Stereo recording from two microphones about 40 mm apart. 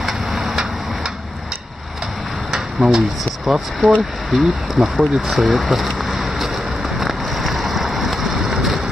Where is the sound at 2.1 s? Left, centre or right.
Centre.